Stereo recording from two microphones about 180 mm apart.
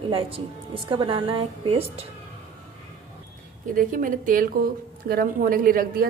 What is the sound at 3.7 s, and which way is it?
Speech, 50° right (ahead or behind).